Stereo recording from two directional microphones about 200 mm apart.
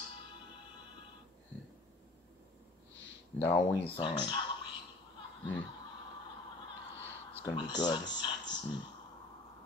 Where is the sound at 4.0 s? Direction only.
25° left (ahead or behind).